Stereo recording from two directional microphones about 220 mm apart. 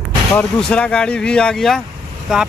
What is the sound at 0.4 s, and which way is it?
Speech, 5° left (ahead or behind).